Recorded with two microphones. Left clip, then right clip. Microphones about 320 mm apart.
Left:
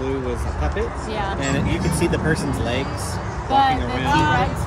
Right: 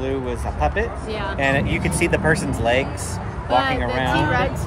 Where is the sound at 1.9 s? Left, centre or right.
Centre.